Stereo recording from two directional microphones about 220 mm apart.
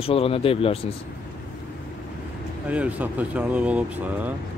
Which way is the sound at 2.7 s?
5° right (ahead or behind).